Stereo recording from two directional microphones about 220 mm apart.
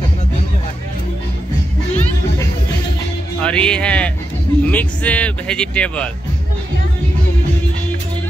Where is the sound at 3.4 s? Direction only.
5° left (ahead or behind).